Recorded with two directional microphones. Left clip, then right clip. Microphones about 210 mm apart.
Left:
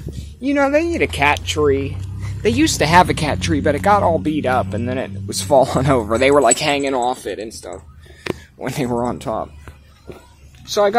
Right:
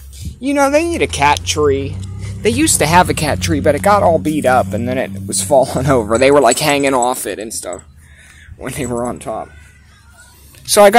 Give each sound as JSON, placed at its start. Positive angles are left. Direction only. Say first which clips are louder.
{"t": 0.4, "sound": "speech", "louder": "right 3 dB", "side_deg": -5}
{"t": 5.3, "sound": "speech", "louder": "right 1 dB", "side_deg": 0}
{"t": 5.9, "sound": "speech", "louder": "right 4 dB", "side_deg": -15}
{"t": 8.5, "sound": "speech", "louder": "right 2 dB", "side_deg": 5}
{"t": 10.6, "sound": "speech", "louder": "right 8 dB", "side_deg": -40}